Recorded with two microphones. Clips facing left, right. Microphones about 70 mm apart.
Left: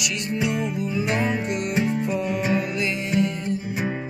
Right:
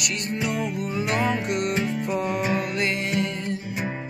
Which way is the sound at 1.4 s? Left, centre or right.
Right.